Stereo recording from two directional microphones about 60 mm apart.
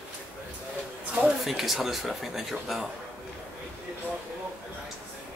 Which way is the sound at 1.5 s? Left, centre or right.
Centre.